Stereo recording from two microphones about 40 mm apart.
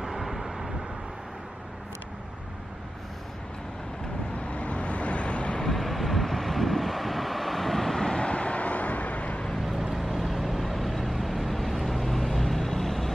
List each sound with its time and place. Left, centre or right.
0.2 s vehicle: centre
4.5 s vehicle: left
5.6 s vehicle: centre; by 9.4 s left
9.6 s vehicle: centre